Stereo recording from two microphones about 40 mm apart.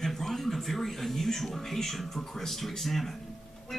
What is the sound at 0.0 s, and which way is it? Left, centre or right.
Music, centre.